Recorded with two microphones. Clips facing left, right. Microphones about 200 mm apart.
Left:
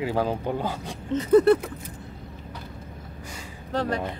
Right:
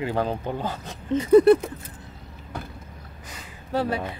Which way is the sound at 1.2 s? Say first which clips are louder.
Right 3 dB; 10° right (ahead or behind).